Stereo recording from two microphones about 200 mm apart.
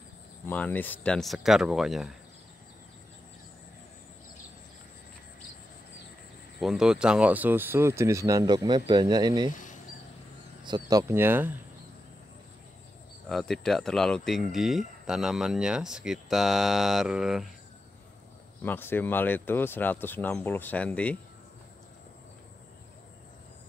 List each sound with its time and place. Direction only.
0.5 s speech: 10° left (ahead or behind)
6.6 s speech: centre (ahead or behind); by 9.5 s 20° right (ahead or behind)
9.5 s cricket: 40° left (ahead or behind)
10.6 s speech: 20° right (ahead or behind)
13.3 s speech: centre (ahead or behind)
18.6 s speech: 10° left (ahead or behind)